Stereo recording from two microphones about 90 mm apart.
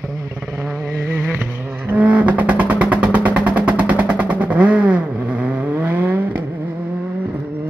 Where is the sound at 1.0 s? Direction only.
25° right (ahead or behind).